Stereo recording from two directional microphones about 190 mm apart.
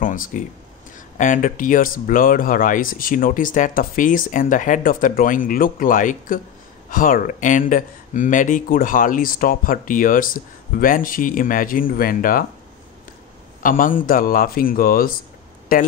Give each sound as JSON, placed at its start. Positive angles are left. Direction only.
{"t": 0.0, "sound": "speech", "side_deg": 45}
{"t": 13.6, "sound": "speech", "side_deg": 45}